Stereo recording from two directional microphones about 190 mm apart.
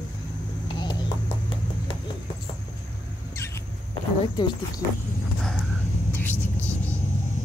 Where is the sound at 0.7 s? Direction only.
25° left (ahead or behind).